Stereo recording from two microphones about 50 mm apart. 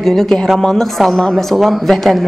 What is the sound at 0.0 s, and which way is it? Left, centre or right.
A woman's voice, centre.